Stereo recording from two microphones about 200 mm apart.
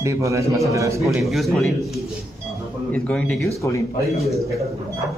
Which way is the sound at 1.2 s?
Centre (ahead or behind).